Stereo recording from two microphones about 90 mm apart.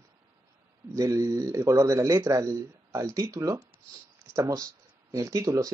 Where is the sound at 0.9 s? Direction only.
40° right (ahead or behind).